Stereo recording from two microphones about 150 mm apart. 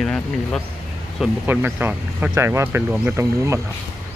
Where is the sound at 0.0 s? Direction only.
5° left (ahead or behind).